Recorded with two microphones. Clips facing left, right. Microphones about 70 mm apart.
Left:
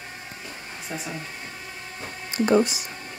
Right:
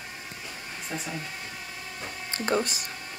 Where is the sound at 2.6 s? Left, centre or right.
Right.